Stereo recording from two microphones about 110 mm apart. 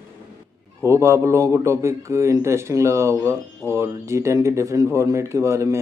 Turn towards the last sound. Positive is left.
turn(degrees=-25)  # may be behind; listen again after turning